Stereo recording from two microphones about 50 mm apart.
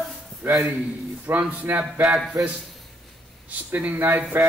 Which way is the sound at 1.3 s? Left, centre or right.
Right.